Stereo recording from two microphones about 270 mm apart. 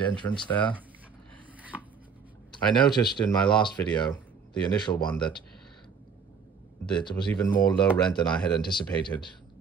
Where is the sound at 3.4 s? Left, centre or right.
Centre.